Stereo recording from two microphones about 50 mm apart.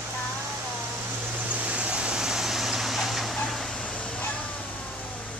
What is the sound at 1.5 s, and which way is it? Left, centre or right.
Vehicle, right.